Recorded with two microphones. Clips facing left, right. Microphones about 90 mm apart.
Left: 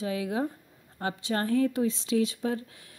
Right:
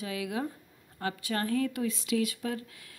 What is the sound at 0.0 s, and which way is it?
Speech, 30° left (ahead or behind).